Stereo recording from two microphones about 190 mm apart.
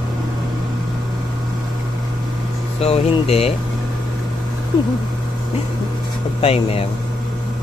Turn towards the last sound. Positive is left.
turn(degrees=30)  # may be behind; listen again after turning